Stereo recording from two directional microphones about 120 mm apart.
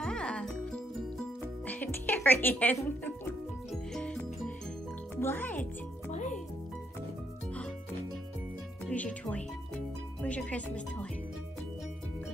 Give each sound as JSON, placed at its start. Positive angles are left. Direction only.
{"t": 0.0, "sound": "music", "side_deg": 5}
{"t": 5.1, "sound": "music", "side_deg": 20}
{"t": 6.1, "sound": "music", "side_deg": 90}
{"t": 8.8, "sound": "speech", "side_deg": 10}